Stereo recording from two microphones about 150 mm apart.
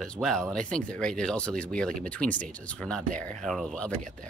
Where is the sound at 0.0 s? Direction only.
5° left (ahead or behind).